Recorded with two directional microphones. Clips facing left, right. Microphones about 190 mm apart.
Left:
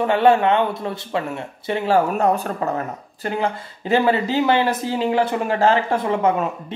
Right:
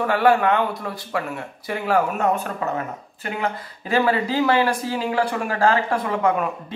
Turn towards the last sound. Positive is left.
turn(degrees=25)  # may be behind; listen again after turning